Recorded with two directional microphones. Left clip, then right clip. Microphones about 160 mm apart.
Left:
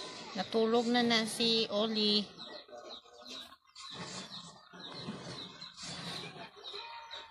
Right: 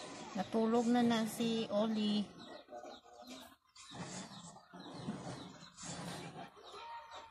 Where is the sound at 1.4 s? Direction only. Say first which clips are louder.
Left 6 dB; 50° left (ahead or behind).